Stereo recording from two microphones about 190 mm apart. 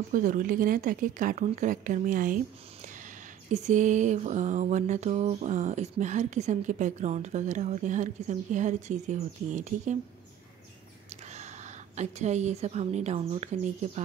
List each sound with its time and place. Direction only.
0.1 s speech: 45° right (ahead or behind)
3.5 s a sound: 40° right (ahead or behind)
11.1 s a woman's voice: 35° right (ahead or behind)